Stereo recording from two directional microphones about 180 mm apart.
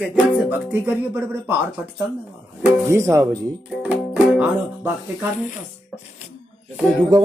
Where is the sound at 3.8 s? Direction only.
5° right (ahead or behind).